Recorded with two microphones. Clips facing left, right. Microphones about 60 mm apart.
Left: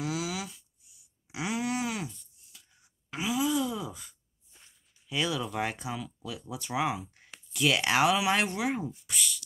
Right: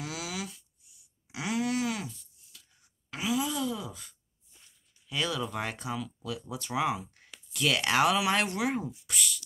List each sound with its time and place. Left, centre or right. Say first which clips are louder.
0.0 s a sound: left 4 dB; centre
3.1 s groan: left 2 dB; centre
3.6 s sigh: even; centre
5.1 s speech: left 1 dB; centre